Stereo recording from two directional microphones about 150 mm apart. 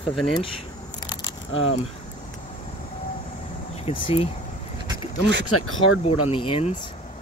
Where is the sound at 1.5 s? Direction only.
40° left (ahead or behind).